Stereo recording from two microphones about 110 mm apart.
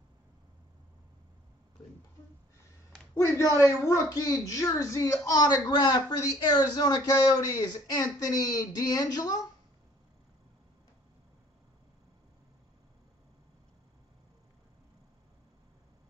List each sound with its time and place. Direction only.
3.2 s a woman's voice: 25° left (ahead or behind)